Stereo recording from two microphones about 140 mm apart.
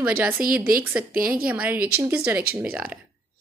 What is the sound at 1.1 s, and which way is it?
Speech, 90° right.